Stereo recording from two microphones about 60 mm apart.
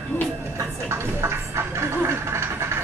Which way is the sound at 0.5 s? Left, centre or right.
Right.